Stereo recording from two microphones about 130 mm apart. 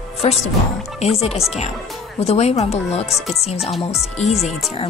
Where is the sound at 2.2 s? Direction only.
55° left (ahead or behind).